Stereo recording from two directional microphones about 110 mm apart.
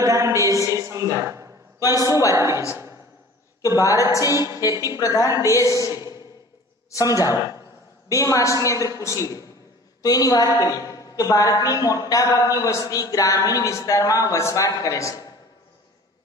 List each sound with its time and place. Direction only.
0.0 s a sound: 30° right (ahead or behind)
2.0 s a woman's voice: 30° left (ahead or behind)
2.3 s a woman's voice: 25° right (ahead or behind)
3.6 s a woman's voice: 30° left (ahead or behind)